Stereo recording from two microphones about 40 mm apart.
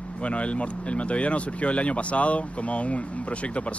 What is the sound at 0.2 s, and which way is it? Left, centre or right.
Speech, left.